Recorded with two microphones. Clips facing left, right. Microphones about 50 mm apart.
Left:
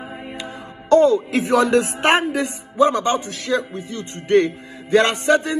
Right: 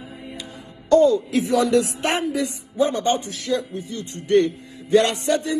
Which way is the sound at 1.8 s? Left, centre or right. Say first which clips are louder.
Left 4 dB; left.